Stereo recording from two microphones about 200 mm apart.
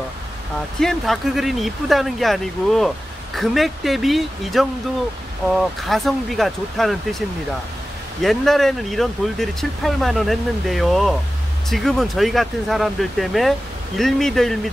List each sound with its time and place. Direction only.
0.7 s speech: centre (ahead or behind)